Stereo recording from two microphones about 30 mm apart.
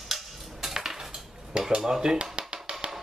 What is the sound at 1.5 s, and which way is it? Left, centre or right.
Dishes, right.